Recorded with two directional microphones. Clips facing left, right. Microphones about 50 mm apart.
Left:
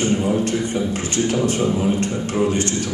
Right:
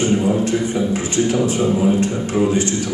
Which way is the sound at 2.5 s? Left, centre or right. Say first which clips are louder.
Right 3 dB; left.